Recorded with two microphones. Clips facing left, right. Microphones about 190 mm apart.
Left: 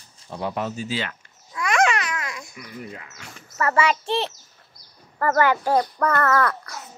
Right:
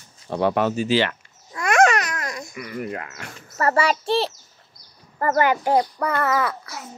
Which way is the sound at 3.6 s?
35° right (ahead or behind).